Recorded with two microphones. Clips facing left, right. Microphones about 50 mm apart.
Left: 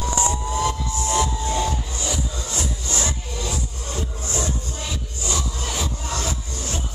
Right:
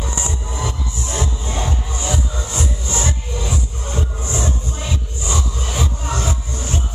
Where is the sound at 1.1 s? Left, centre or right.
Right.